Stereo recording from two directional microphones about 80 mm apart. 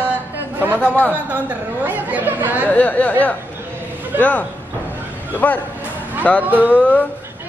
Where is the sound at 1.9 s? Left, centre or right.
Right.